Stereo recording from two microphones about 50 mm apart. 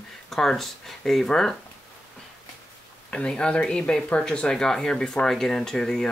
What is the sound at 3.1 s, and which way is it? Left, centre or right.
Speech, centre.